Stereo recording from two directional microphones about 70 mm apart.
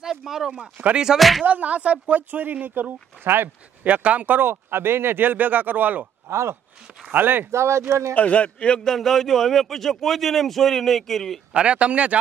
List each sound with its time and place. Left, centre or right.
0.0 s speech: centre
0.7 s speech: right
1.0 s a man's voice: centre
1.4 s speech: right
6.2 s speech: right
7.1 s speech: right
7.5 s speech: right
8.1 s a man's voice: centre
11.5 s speech: centre